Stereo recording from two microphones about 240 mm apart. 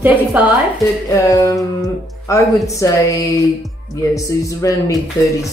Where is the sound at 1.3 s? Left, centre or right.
Centre.